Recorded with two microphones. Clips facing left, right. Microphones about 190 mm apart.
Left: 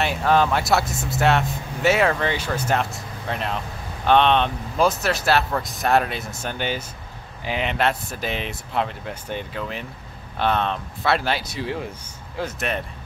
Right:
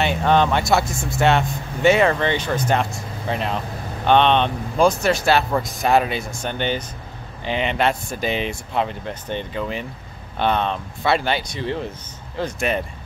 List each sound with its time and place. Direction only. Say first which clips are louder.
0.0 s speech: right 2 dB; centre (ahead or behind)